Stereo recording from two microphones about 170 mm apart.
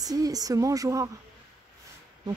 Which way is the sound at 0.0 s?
20° right (ahead or behind).